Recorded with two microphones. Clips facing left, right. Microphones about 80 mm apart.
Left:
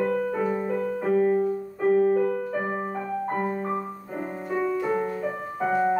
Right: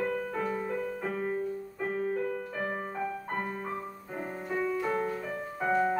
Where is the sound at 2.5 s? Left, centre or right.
Left.